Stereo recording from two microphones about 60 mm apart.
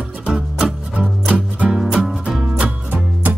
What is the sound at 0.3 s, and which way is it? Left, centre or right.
Music, centre.